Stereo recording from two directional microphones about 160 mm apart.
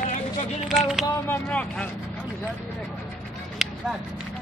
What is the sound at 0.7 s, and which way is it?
Speech, centre (ahead or behind).